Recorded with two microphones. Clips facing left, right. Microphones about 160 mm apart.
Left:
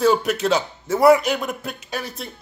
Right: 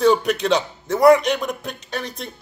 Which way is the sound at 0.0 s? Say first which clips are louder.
Right 1 dB; 5° left (ahead or behind).